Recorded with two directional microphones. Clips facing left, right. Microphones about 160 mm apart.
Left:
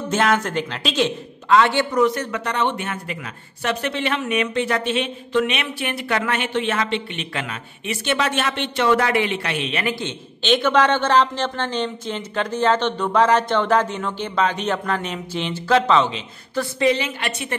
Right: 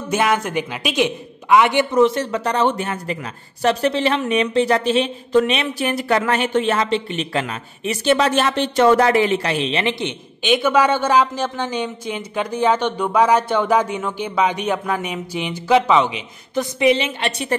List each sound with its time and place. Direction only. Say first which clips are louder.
0.1 s a man's voice: right 1 dB; 10° right (ahead or behind)